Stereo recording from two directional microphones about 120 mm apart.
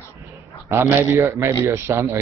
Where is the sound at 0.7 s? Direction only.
20° right (ahead or behind).